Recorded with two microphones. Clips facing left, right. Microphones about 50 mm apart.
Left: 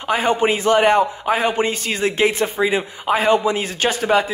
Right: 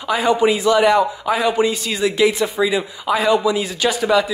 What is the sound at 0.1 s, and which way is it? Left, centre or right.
A man's voice, left.